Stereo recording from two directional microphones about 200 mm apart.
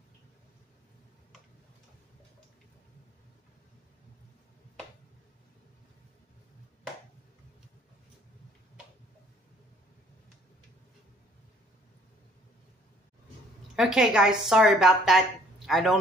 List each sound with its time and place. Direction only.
13.7 s a woman's voice: 5° right (ahead or behind)